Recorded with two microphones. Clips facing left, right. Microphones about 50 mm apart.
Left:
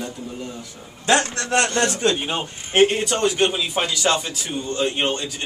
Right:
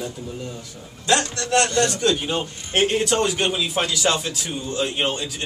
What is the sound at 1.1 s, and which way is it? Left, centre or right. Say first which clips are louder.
A man's voice: left 1 dB; left.